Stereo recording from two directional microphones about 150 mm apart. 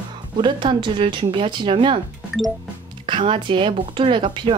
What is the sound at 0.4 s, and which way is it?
Speech, 30° right (ahead or behind).